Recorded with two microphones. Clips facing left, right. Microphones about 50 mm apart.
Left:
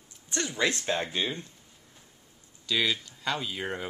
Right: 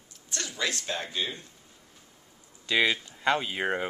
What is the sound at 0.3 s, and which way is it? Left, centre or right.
Speech, left.